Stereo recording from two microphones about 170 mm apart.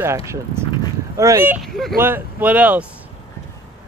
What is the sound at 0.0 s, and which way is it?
Speech, 15° right (ahead or behind).